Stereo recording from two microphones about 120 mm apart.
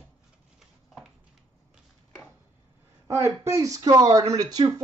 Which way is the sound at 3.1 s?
25° right (ahead or behind).